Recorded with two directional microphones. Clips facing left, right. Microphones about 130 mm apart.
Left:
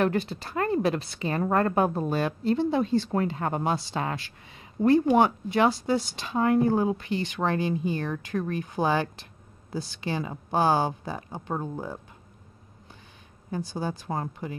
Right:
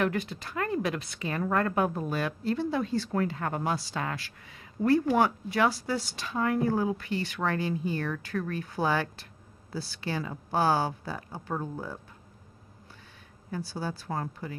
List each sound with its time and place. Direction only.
0.0 s speech: 30° left (ahead or behind)
13.5 s speech: 20° left (ahead or behind)